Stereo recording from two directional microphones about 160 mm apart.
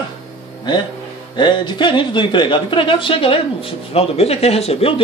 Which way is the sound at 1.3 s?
30° left (ahead or behind).